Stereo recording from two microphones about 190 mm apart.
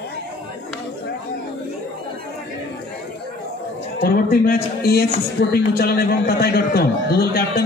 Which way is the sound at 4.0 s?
50° left (ahead or behind).